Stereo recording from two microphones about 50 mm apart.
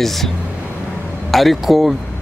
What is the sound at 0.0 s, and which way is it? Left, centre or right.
Speech, centre.